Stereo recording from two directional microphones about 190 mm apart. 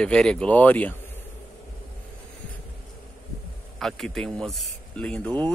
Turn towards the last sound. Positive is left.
turn(degrees=10)  # may be behind; listen again after turning